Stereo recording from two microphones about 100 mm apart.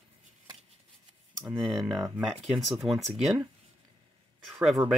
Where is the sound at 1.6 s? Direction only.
5° left (ahead or behind).